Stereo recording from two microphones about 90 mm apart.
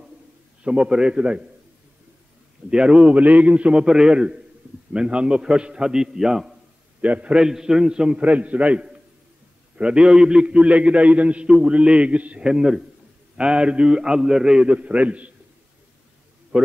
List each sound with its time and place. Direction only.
0.7 s a man's voice: 10° right (ahead or behind)
2.7 s a man's voice: 10° right (ahead or behind)
7.0 s a man's voice: 15° right (ahead or behind)
16.5 s a man's voice: 10° right (ahead or behind)